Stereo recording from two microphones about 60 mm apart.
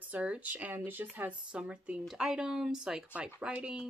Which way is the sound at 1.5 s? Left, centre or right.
Centre.